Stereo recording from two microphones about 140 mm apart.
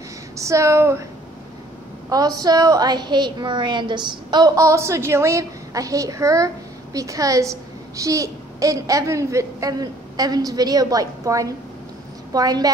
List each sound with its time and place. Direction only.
0.4 s a woman's voice: 20° right (ahead or behind)
2.0 s a woman's voice: 25° right (ahead or behind)